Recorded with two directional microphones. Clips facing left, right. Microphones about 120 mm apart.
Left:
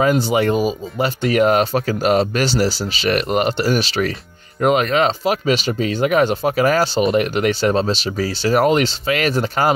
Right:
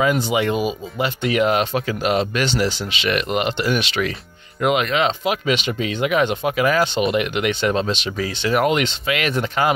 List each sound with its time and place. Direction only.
0.3 s speech: 40° left (ahead or behind)